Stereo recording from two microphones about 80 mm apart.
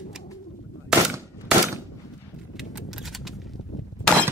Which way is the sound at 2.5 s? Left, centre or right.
Centre.